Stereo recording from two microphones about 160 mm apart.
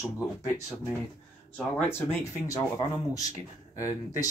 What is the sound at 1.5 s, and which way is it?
Speech, 15° left (ahead or behind).